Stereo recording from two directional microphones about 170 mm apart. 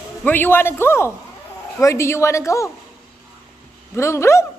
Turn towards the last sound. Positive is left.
turn(degrees=15)  # may be behind; listen again after turning